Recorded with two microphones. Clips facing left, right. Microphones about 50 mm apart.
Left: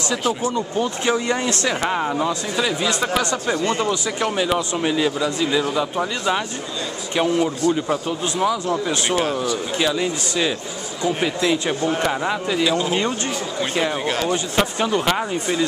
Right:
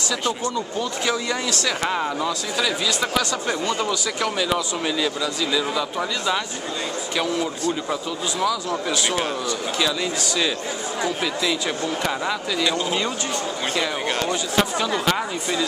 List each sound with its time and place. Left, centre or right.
0.2 s speech: centre
0.7 s speech: left
1.8 s speech: centre
2.1 s speech: left
4.2 s speech: centre
7.2 s speech: left
9.1 s speech: centre
9.8 s speech: left
11.1 s speech: left
12.6 s speech: centre
14.0 s speech: centre
14.3 s speech: left
15.0 s speech: centre